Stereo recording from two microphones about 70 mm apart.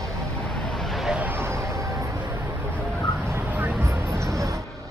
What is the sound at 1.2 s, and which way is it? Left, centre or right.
Vehicle, right.